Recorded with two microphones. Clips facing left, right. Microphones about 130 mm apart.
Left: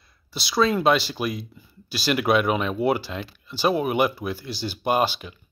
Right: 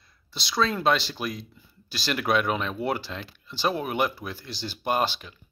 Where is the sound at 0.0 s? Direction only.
5° left (ahead or behind).